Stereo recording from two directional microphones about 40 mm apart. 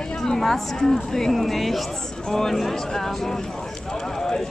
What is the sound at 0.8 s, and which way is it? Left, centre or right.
Speech, centre.